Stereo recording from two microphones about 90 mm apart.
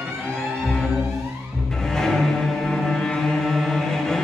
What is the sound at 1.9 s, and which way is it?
Music, 5° left (ahead or behind).